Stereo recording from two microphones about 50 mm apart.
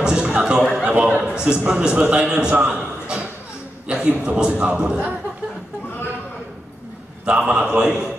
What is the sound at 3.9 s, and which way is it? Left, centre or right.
A man's voice, centre.